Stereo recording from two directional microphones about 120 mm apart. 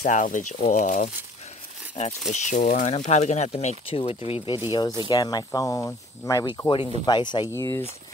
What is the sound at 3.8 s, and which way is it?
Speech, 50° left (ahead or behind).